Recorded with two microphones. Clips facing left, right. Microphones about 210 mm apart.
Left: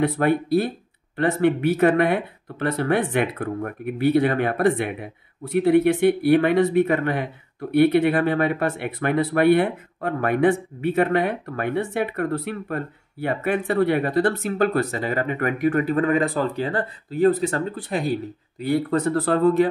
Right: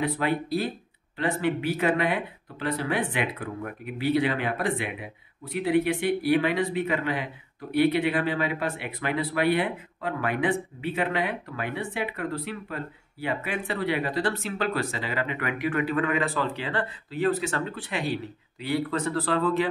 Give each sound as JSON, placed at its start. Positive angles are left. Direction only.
{"t": 0.0, "sound": "speech", "side_deg": 55}